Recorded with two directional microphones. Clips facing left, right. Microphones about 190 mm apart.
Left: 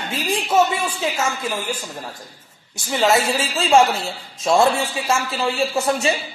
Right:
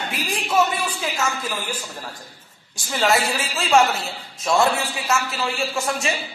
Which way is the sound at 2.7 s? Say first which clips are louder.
Left 3 dB; 20° left (ahead or behind).